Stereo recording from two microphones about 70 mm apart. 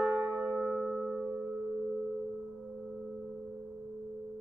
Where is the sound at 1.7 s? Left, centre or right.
Centre.